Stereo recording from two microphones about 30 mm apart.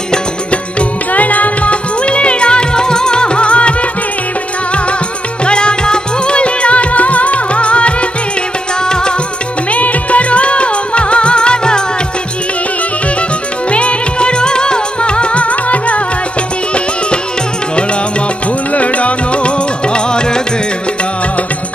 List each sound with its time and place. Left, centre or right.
1.1 s music: left
1.7 s music: left
5.4 s music: left
8.8 s music: left
9.7 s music: left
13.7 s music: left
18.7 s music: left